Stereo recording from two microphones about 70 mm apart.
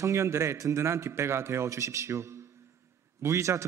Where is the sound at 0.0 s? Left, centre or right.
Right.